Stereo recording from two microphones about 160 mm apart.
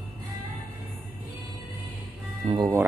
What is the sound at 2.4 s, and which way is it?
Speech, 25° right (ahead or behind).